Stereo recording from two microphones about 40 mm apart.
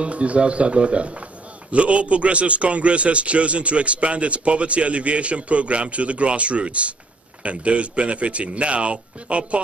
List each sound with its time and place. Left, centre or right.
0.0 s a man's voice: right